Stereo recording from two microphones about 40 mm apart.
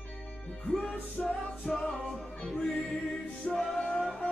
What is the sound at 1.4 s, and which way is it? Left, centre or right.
Music, centre.